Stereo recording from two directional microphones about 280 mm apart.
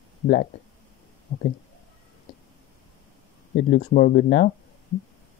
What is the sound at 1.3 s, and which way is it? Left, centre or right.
Speech, left.